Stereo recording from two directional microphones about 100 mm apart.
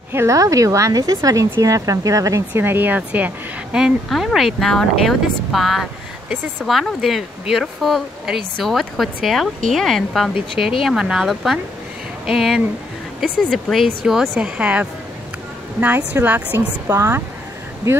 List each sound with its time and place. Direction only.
0.1 s a woman's voice: 30° right (ahead or behind)
2.5 s a woman's voice: 20° right (ahead or behind)